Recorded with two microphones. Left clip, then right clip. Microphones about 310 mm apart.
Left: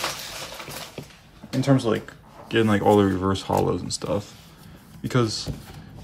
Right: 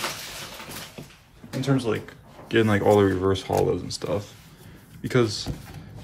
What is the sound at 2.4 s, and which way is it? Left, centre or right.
Speech, centre.